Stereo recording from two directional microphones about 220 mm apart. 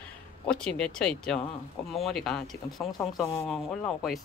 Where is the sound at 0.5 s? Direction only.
5° left (ahead or behind).